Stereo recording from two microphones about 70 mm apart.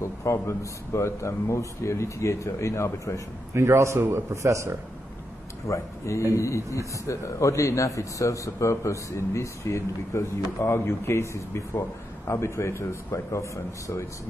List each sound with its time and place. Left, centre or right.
0.0 s a man's voice: left
3.5 s a man's voice: right
5.7 s a man's voice: left